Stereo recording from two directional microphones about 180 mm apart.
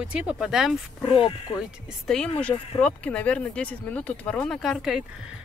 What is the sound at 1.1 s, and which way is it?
Speech, 30° left (ahead or behind).